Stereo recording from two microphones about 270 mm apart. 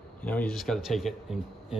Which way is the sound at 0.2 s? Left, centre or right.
Centre.